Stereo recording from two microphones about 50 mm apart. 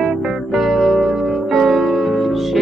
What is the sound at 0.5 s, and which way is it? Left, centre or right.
Music, centre.